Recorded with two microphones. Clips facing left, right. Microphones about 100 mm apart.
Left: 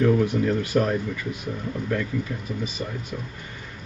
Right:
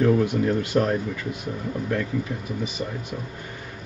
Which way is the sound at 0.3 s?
20° right (ahead or behind).